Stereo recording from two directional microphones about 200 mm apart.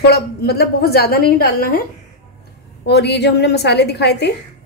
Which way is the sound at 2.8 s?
55° left (ahead or behind).